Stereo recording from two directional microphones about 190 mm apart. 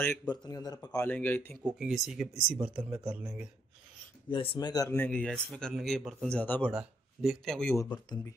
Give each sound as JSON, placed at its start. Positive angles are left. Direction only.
{"t": 0.0, "sound": "speech", "side_deg": 10}
{"t": 1.6, "sound": "speech", "side_deg": -5}
{"t": 4.3, "sound": "speech", "side_deg": 25}
{"t": 7.7, "sound": "speech", "side_deg": 15}